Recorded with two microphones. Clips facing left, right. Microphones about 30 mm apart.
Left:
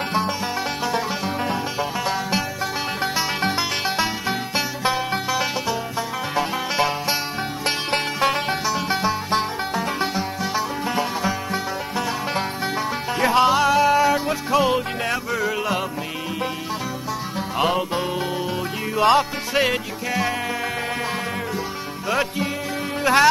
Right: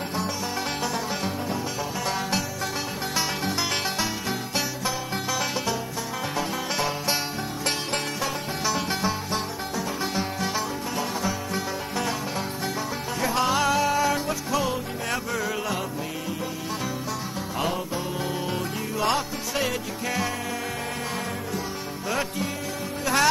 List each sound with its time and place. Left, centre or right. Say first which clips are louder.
3.5 s music: left 4 dB; left
7.9 s music: left 7 dB; left
8.8 s music: left 5 dB; centre
9.3 s music: left 7 dB; left
10.1 s music: left 3 dB; centre
11.0 s music: left 4 dB; left
13.2 s music: left 8 dB; left
13.5 s music: left 6 dB; centre
14.2 s music: left 6 dB; left
15.0 s music: left 4 dB; centre
17.6 s music: left 7 dB; left
18.9 s music: left 9 dB; left
23.1 s speech: left 7 dB; left